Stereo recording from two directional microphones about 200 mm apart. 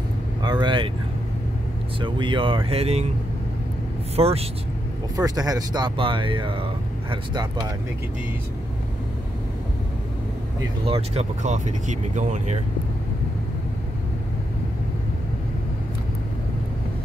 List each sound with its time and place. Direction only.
0.4 s vehicle: 20° right (ahead or behind)
2.0 s speech: 25° right (ahead or behind)
4.2 s speech: 30° right (ahead or behind)
5.1 s speech: 20° right (ahead or behind)
10.9 s speech: 30° right (ahead or behind)